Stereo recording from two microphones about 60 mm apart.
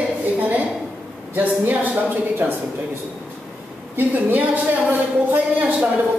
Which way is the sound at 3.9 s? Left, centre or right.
Right.